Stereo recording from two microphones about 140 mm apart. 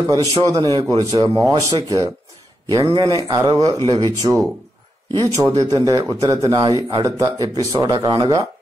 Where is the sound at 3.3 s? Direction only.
25° right (ahead or behind).